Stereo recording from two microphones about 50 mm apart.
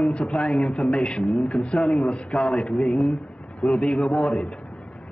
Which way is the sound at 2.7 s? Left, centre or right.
Left.